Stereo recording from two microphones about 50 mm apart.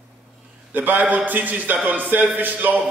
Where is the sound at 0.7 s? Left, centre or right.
Right.